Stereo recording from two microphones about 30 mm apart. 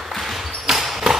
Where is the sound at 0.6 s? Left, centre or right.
Centre.